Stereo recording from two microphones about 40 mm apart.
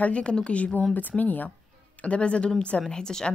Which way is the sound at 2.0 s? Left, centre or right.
Left.